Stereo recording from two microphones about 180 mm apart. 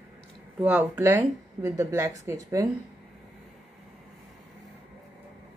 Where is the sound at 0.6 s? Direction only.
10° right (ahead or behind).